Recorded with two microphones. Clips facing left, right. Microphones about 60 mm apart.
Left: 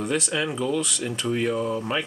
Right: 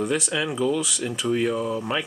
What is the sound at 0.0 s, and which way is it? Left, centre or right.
Speech, centre.